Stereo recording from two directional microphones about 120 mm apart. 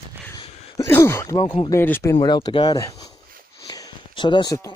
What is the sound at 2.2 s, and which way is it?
Speech, 40° left (ahead or behind).